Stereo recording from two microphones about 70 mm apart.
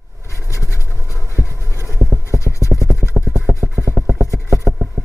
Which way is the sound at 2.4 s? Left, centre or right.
Left.